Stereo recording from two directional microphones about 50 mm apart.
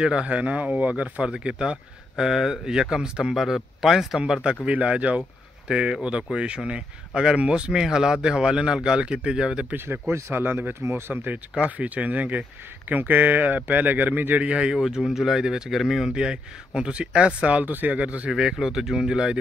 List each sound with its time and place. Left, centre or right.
0.0 s speech: right
1.2 s speech: centre
4.6 s speech: right
9.8 s speech: right
10.8 s speech: right
11.7 s speech: right
14.4 s speech: right; by 16.1 s centre
16.2 s speech: centre
18.3 s speech: centre